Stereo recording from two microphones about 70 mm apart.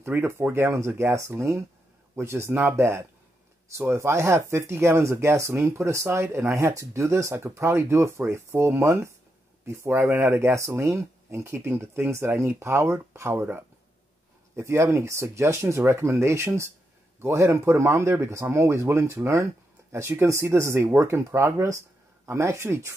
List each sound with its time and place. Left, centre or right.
0.0 s speech: right
14.5 s speech: right